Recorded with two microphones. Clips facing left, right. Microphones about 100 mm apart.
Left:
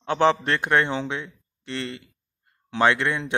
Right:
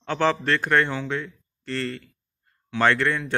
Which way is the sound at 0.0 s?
20° left (ahead or behind).